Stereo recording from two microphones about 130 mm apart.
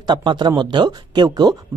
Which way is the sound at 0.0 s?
35° right (ahead or behind).